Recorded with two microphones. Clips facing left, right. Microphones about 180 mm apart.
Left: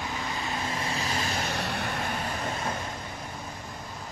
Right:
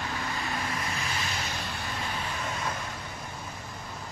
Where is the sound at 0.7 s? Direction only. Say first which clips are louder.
Left 3 dB; 30° left (ahead or behind).